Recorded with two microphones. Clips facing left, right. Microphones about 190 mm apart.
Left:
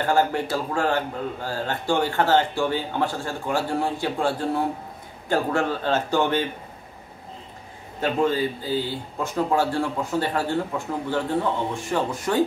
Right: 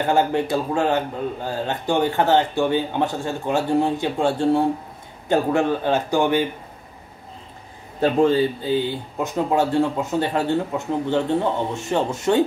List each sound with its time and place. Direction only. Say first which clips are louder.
0.0 s a man's voice: right 2 dB; 20° right (ahead or behind)
8.0 s speech: right 5 dB; 30° right (ahead or behind)